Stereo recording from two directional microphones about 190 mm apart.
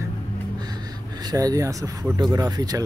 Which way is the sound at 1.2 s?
20° right (ahead or behind).